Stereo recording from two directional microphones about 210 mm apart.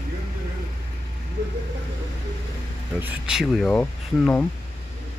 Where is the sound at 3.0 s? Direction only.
5° right (ahead or behind).